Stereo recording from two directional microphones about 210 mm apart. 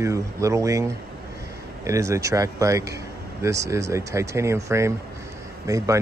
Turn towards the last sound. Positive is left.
turn(degrees=-15)  # may be behind; listen again after turning